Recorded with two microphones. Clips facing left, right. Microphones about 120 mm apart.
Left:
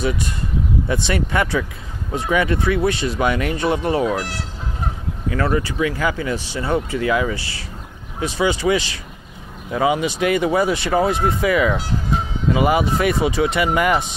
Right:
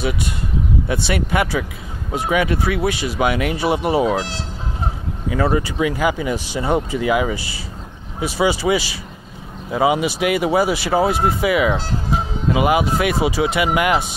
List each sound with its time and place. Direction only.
0.8 s speech: 5° right (ahead or behind)
4.1 s speech: 30° right (ahead or behind)
5.3 s speech: 15° right (ahead or behind)